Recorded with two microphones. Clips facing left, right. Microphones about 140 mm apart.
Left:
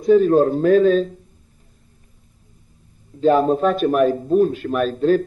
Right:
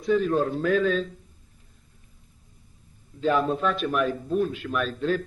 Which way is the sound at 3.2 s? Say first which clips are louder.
Left 8 dB; 40° left (ahead or behind).